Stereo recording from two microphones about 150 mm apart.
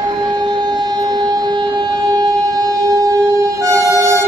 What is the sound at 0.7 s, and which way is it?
Siren, 25° right (ahead or behind).